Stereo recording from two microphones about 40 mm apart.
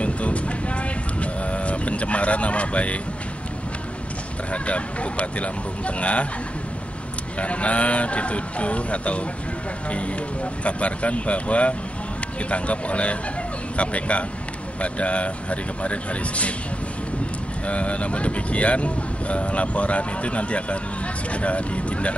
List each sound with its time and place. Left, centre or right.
0.0 s vehicle: left
4.5 s speech: left
7.3 s speech: left
17.6 s speech: left